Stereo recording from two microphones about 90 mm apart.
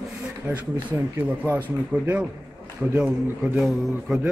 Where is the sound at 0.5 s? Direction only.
15° right (ahead or behind).